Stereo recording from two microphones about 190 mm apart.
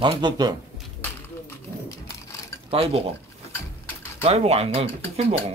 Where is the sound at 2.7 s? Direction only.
30° right (ahead or behind).